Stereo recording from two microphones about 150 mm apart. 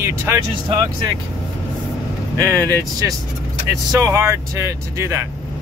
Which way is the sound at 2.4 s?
20° right (ahead or behind).